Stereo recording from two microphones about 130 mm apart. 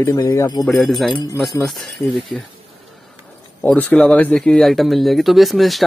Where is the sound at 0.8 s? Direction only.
Centre (ahead or behind).